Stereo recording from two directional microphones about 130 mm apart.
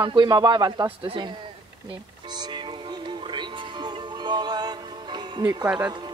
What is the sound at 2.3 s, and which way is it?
Music, 35° right (ahead or behind).